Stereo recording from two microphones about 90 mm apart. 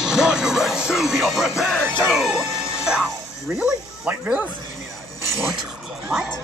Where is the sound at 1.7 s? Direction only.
10° left (ahead or behind).